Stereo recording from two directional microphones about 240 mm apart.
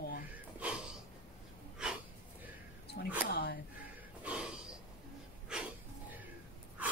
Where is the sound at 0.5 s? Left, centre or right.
Centre.